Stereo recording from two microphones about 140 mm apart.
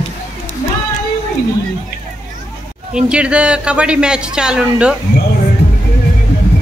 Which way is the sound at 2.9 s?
5° right (ahead or behind).